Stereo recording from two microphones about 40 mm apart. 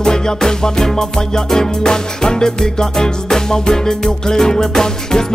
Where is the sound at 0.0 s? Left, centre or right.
Centre.